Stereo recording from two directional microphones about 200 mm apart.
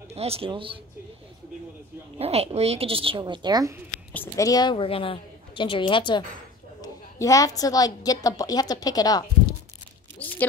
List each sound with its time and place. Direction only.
0.1 s a woman's voice: 30° right (ahead or behind)
2.1 s a woman's voice: 30° right (ahead or behind)
4.1 s a woman's voice: 10° left (ahead or behind)
10.1 s a sound: 10° left (ahead or behind)